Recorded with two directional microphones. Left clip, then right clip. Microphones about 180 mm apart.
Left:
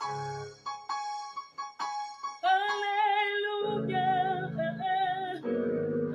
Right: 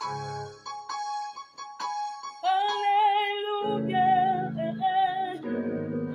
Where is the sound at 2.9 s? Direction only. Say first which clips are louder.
Right 4 dB; 10° right (ahead or behind).